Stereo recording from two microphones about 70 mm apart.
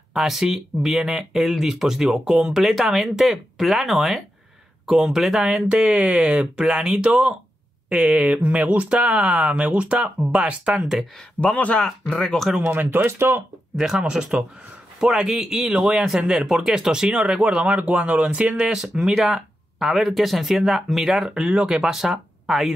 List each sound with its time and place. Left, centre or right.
0.1 s speech: centre
11.4 s speech: centre
11.8 s speech: centre
12.5 s speech: right
13.7 s speech: centre